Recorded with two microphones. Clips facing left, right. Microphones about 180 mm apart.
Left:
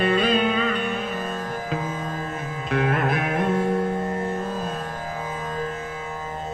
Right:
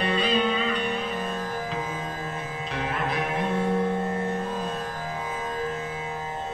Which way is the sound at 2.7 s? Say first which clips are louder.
Left 7 dB; 55° left (ahead or behind).